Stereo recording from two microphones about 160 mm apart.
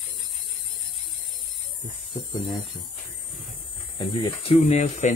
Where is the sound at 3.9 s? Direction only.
35° left (ahead or behind).